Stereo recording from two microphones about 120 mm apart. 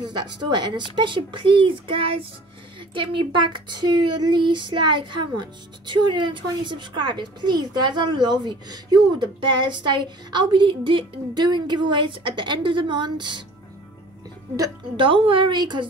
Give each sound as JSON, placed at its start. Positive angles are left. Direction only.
{"t": 0.1, "sound": "speech", "side_deg": -40}
{"t": 15.0, "sound": "speech", "side_deg": -50}